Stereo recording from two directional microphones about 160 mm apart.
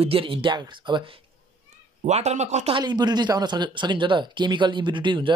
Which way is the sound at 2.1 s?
45° right (ahead or behind).